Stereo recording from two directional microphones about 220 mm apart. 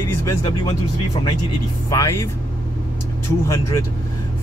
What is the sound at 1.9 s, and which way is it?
Speech, 15° left (ahead or behind).